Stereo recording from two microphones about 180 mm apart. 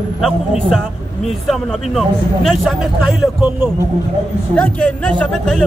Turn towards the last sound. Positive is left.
turn(degrees=5)  # may be behind; listen again after turning